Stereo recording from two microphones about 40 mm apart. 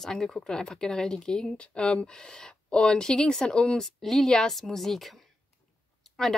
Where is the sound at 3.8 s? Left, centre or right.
Centre.